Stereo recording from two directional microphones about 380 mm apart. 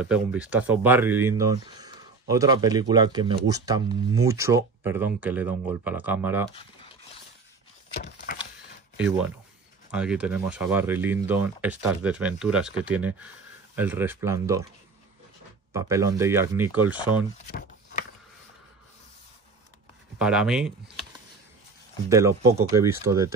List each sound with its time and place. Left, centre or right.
0.0 s speech: centre
7.9 s a sound: left
9.8 s speech: centre
15.7 s speech: centre
17.5 s a sound: left
20.2 s speech: centre
22.1 s speech: centre